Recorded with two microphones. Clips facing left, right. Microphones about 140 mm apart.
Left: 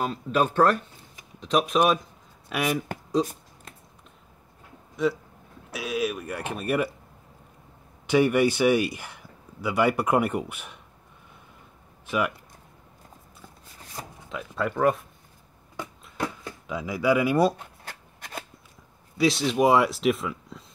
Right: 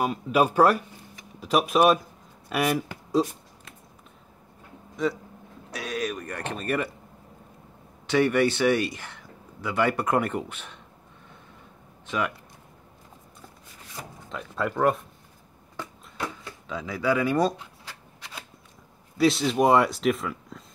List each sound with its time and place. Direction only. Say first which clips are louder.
0.0 s speech: right 2 dB; 10° right (ahead or behind)
5.0 s speech: left 2 dB; centre (ahead or behind)
8.1 s a man's voice: left 1 dB; 10° left (ahead or behind)
14.3 s speech: even; centre (ahead or behind)
16.6 s a man's voice: left 2 dB; 10° left (ahead or behind)
17.6 s shuffling cards: left 2 dB; 50° left (ahead or behind)
19.1 s speech: right 1 dB; centre (ahead or behind)